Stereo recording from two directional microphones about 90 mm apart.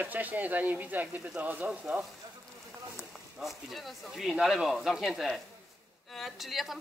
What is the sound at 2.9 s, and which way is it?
A woman's voice, centre (ahead or behind).